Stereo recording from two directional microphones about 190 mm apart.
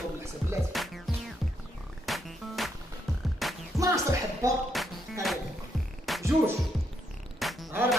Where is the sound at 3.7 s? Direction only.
15° right (ahead or behind).